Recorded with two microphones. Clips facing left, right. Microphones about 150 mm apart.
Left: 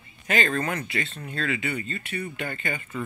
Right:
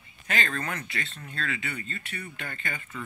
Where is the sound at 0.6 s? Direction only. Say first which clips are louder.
Left 6 dB; 15° left (ahead or behind).